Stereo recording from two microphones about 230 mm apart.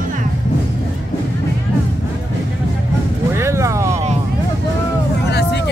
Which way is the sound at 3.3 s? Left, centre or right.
Centre.